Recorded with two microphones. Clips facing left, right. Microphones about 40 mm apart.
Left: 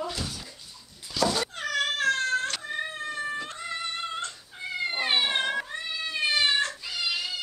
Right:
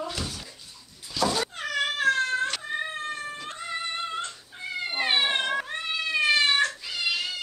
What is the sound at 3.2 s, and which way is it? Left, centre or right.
Cat, centre.